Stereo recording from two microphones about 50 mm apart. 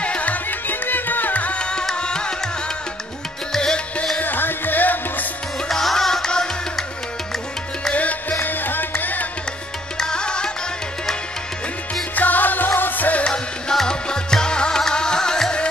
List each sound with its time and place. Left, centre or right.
0.0 s music: left
3.5 s music: centre
4.2 s music: left
5.7 s music: centre
7.9 s music: left
9.9 s music: centre
12.2 s music: left
13.2 s music: centre